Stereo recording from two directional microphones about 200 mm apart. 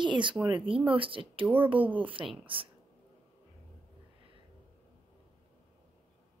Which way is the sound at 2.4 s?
25° right (ahead or behind).